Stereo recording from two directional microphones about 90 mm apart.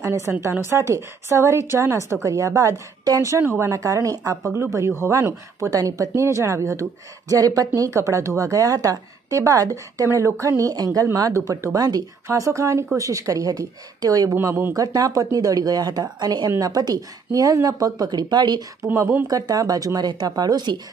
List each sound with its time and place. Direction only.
0.0 s a woman's voice: 30° right (ahead or behind)
14.3 s a woman's voice: 25° right (ahead or behind)
14.7 s speech: 40° right (ahead or behind)